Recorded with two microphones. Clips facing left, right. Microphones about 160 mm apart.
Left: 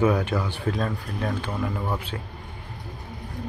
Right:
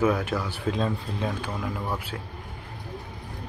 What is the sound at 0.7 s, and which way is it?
Speech, 15° right (ahead or behind).